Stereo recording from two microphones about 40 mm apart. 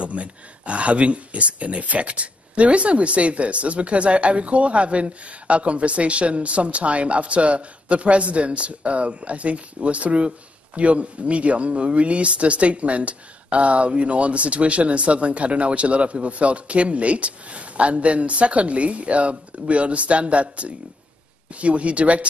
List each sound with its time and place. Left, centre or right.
0.0 s speech: right